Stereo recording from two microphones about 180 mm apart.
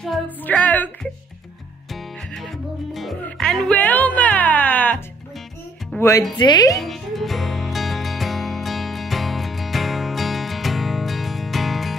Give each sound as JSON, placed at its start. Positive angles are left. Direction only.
{"t": 0.0, "sound": "music", "side_deg": 5}
{"t": 2.3, "sound": "music", "side_deg": 0}
{"t": 6.3, "sound": "speech", "side_deg": 25}
{"t": 6.8, "sound": "music", "side_deg": 0}